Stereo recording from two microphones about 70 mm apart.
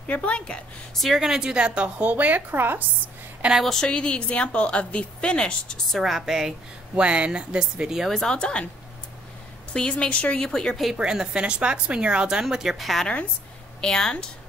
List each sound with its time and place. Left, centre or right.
0.1 s a woman's voice: centre
0.9 s a woman's voice: centre; by 2.8 s right
3.5 s a woman's voice: centre
7.0 s a woman's voice: centre
8.1 s a woman's voice: centre
8.4 s a woman's voice: centre
9.8 s a woman's voice: centre
10.9 s a woman's voice: centre